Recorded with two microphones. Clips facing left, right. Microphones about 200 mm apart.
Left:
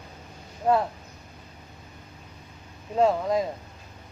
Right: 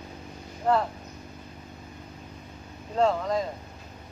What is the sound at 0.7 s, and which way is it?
Speech, 20° left (ahead or behind).